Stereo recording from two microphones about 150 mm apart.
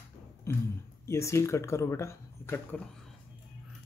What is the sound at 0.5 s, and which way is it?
Speech, 15° left (ahead or behind).